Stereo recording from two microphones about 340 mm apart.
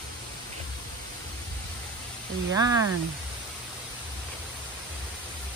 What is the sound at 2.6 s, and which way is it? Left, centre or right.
Speech, centre.